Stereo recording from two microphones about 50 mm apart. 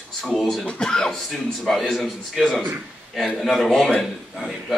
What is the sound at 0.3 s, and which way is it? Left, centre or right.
Speech, centre.